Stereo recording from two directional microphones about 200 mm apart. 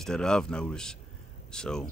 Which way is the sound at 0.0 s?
5° left (ahead or behind).